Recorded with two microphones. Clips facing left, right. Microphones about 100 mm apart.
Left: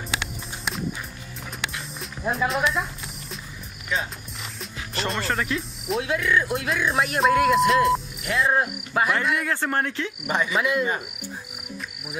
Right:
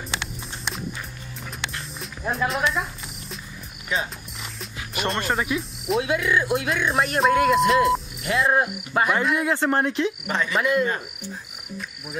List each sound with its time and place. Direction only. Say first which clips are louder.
0.2 s a sound: left 1 dB; centre (ahead or behind)
1.6 s music: left 1 dB; centre (ahead or behind)
4.9 s speech: right 2 dB; 5° right (ahead or behind)
9.4 s speech: right 4 dB; 15° right (ahead or behind)
10.2 s cricket: left 1 dB; 15° left (ahead or behind)
10.5 s speech: right 4 dB; centre (ahead or behind)
10.9 s cricket: even; 15° left (ahead or behind)